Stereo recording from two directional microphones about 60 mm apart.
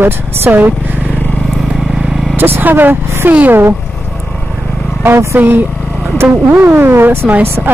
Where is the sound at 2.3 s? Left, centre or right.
Right.